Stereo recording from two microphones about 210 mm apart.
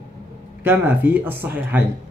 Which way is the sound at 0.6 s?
10° right (ahead or behind).